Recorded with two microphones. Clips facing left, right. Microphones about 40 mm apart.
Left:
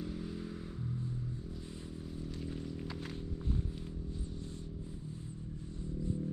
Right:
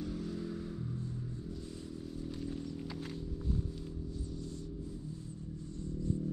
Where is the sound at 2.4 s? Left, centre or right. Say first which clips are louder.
Right 1 dB; centre.